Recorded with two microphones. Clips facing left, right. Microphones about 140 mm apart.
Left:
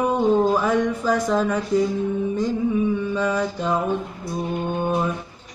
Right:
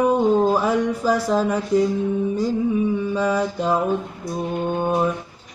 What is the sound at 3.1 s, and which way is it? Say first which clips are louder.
Mantra: right 2 dB; 10° right (ahead or behind).